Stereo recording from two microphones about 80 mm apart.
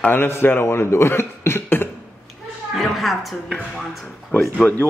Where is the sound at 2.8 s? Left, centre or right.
Centre.